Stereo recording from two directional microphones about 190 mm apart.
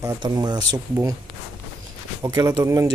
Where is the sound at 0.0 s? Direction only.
20° right (ahead or behind).